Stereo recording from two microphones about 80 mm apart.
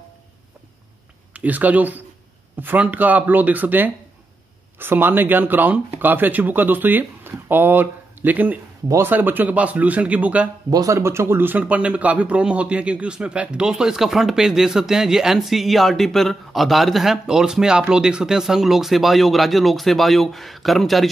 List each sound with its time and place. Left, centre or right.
1.3 s speech: centre
10.7 s speech: right
11.0 s a man's voice: right; by 21.1 s centre